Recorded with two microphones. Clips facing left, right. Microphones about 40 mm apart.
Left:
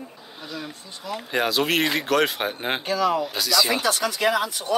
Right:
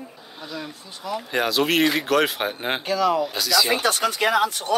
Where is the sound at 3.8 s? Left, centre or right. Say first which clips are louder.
Right 1 dB; right.